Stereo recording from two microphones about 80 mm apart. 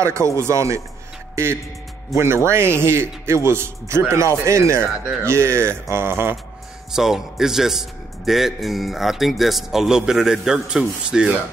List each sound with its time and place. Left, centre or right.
0.0 s a man's voice: right
6.9 s a man's voice: centre